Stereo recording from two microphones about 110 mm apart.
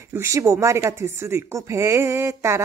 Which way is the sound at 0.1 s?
25° right (ahead or behind).